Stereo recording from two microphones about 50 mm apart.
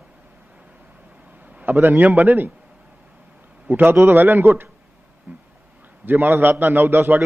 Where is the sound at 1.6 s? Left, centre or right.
Right.